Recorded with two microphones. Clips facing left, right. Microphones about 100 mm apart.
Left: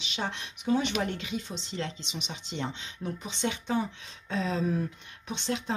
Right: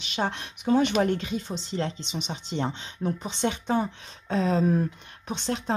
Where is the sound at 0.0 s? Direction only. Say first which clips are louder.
Right 5 dB; 45° right (ahead or behind).